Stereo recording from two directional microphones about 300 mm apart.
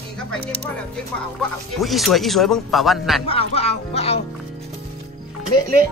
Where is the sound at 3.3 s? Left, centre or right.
Centre.